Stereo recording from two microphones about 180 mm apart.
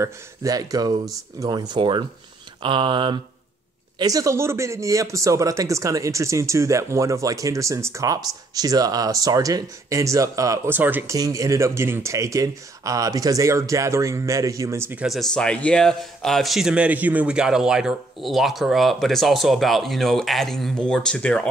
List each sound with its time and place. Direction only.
0.0 s speech: 20° right (ahead or behind); by 21.5 s 5° left (ahead or behind)